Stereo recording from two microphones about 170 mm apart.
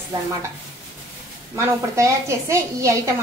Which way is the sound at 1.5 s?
15° right (ahead or behind).